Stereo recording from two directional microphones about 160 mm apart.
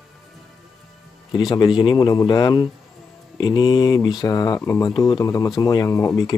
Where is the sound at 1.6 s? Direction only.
30° left (ahead or behind).